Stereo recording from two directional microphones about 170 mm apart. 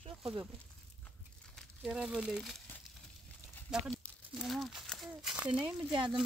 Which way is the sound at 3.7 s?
Centre (ahead or behind).